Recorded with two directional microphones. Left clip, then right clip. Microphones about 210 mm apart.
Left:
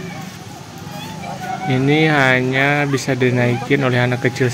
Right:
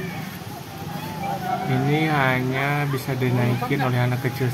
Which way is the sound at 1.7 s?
15° left (ahead or behind).